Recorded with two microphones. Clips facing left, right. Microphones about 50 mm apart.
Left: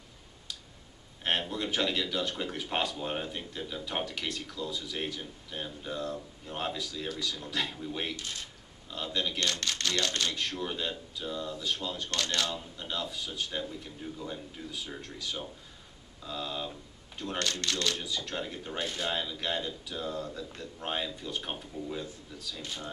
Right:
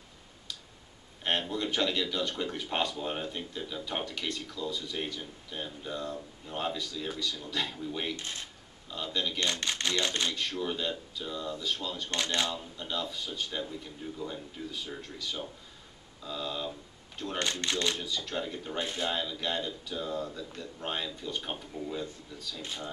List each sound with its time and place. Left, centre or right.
1.2 s a man's voice: centre
8.2 s speech: right
8.9 s a man's voice: centre
9.4 s speech: centre
10.3 s a man's voice: centre
12.1 s speech: centre
12.5 s a man's voice: centre
17.4 s speech: centre
18.0 s a man's voice: centre